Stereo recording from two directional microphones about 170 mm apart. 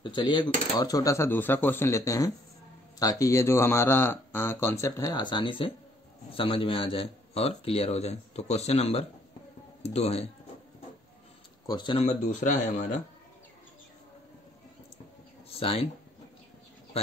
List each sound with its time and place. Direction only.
0.0 s speech: 25° left (ahead or behind)
11.6 s speech: 25° left (ahead or behind)
12.1 s speech: 45° left (ahead or behind)
15.5 s speech: 35° left (ahead or behind)